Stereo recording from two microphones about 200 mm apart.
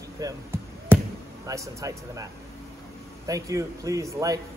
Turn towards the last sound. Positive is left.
turn(degrees=-15)  # may be behind; listen again after turning